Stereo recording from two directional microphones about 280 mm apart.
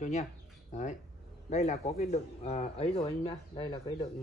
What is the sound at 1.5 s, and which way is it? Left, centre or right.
Speech, left.